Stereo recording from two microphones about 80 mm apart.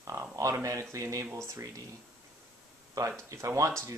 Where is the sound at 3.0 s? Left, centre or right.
Right.